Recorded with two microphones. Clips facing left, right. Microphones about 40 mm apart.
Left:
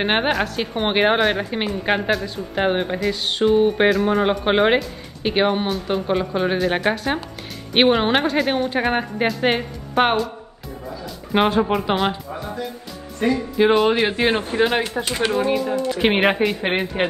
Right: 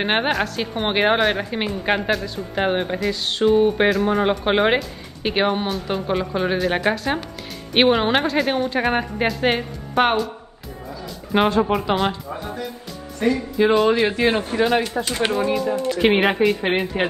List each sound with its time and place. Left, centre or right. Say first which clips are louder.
0.0 s speech: left 1 dB; centre
11.3 s speech: even; centre
13.7 s speech: even; centre
14.1 s speech: even; left
15.9 s speech: right 1 dB; centre